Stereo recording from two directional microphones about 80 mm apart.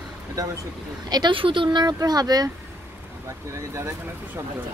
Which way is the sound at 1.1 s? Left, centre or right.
Right.